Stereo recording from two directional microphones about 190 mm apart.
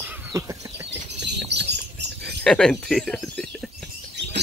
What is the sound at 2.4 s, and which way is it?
Speech, 5° left (ahead or behind).